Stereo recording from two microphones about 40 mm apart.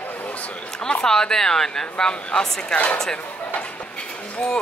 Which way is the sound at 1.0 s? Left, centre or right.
Centre.